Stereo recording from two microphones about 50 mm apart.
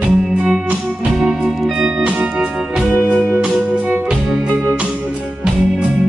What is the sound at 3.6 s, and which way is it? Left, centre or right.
Music, right.